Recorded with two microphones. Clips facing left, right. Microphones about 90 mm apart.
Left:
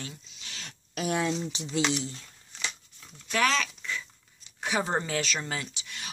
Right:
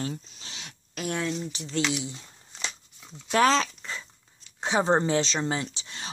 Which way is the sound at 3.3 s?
35° right (ahead or behind).